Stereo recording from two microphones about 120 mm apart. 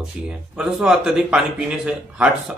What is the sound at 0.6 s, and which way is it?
A man's voice, 5° right (ahead or behind).